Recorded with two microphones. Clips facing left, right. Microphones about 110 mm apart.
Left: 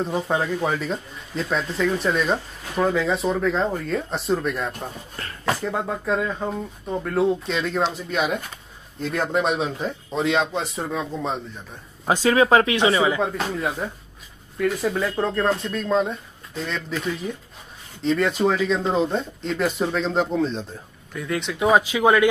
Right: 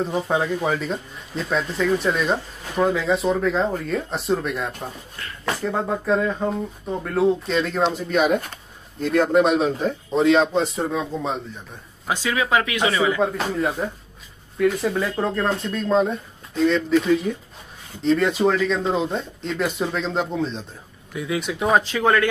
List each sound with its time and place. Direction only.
0.0 s speech: centre (ahead or behind)
12.1 s speech: 40° left (ahead or behind)
13.2 s speech: centre (ahead or behind)
21.8 s speech: 10° left (ahead or behind)